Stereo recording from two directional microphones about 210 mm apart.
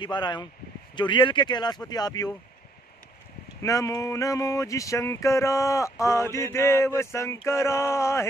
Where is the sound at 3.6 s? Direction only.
15° left (ahead or behind).